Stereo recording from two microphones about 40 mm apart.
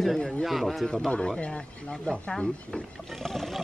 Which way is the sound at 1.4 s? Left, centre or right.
Left.